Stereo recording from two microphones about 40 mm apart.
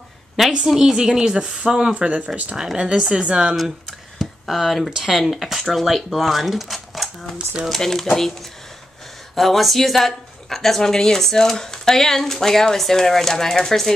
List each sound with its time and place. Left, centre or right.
0.7 s speech: centre
2.0 s speech: right
2.5 s speech: centre
3.3 s speech: centre
4.2 s a sound: centre
4.9 s speech: centre
7.8 s speech: centre
9.3 s speech: centre